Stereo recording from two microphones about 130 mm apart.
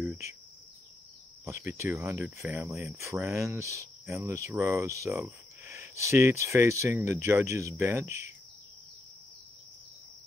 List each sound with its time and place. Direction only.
1.4 s speech: 20° right (ahead or behind)
2.7 s speech: 20° right (ahead or behind)